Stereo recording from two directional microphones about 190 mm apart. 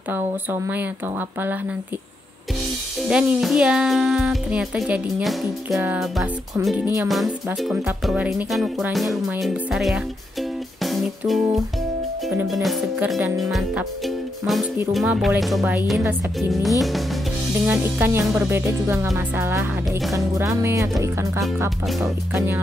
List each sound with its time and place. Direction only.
0.1 s speech: 10° right (ahead or behind)
3.0 s speech: 5° right (ahead or behind)
10.8 s music: centre (ahead or behind)
12.3 s speech: centre (ahead or behind)
17.6 s speech: 10° right (ahead or behind)
21.6 s speech: centre (ahead or behind)